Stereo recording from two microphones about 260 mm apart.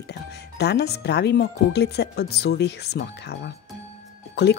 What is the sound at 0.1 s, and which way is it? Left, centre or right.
Speech, left.